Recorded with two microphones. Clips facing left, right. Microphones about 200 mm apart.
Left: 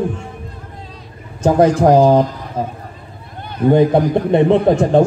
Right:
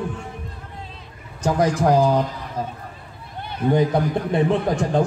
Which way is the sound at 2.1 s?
40° left (ahead or behind).